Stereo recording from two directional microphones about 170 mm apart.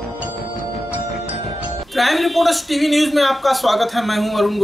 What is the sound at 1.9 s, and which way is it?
Speech, centre (ahead or behind).